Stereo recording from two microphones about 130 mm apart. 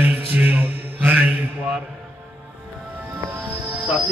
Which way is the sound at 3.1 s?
10° right (ahead or behind).